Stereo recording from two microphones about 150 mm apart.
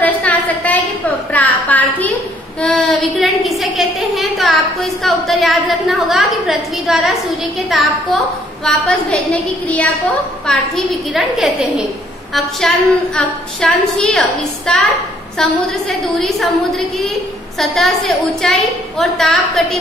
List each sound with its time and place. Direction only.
0.0 s a sound: 10° left (ahead or behind)
2.6 s a woman's voice: centre (ahead or behind)
16.2 s a woman's voice: centre (ahead or behind)